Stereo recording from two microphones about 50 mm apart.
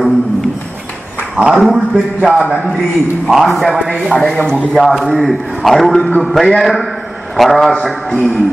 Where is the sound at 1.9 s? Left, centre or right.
Right.